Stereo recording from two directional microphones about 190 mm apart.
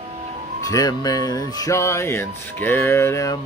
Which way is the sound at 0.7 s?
20° left (ahead or behind).